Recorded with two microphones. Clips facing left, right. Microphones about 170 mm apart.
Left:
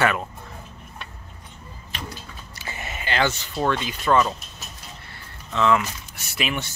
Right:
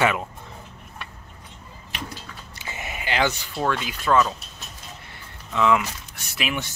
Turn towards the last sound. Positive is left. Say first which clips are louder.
# left 1 dB
turn(degrees=-5)  # may be behind; listen again after turning